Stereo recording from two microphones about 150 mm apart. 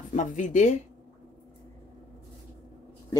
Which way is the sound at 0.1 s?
55° left (ahead or behind).